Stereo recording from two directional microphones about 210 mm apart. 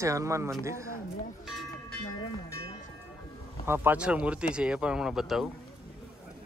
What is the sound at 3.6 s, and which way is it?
Speech, 10° right (ahead or behind).